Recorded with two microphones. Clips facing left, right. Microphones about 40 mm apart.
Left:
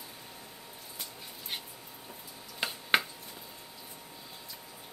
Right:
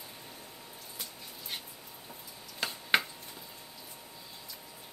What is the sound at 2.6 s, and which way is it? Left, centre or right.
Finger snapping, centre.